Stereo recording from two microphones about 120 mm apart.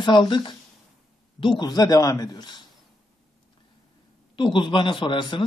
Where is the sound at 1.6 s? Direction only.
35° left (ahead or behind).